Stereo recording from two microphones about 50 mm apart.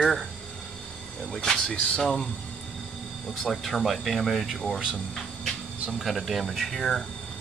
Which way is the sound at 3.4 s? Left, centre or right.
Centre.